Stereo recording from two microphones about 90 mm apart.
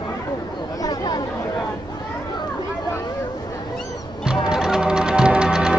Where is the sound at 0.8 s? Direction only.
50° left (ahead or behind).